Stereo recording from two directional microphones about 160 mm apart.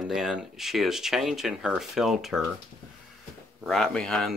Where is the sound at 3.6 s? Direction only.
5° left (ahead or behind).